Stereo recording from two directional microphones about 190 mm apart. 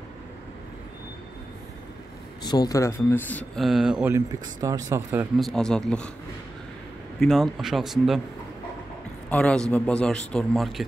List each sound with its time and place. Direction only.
2.4 s speech: 20° left (ahead or behind); by 4.1 s 5° right (ahead or behind)
4.1 s speech: 20° right (ahead or behind)
5.4 s a man's voice: centre (ahead or behind)
7.2 s a man's voice: centre (ahead or behind)
9.3 s a man's voice: 5° left (ahead or behind)